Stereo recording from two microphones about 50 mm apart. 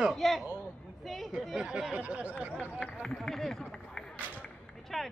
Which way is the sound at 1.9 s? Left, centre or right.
Right.